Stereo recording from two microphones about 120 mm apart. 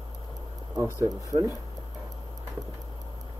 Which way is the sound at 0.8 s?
30° right (ahead or behind).